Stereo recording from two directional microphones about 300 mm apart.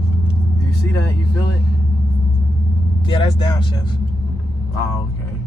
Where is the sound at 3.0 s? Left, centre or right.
Centre.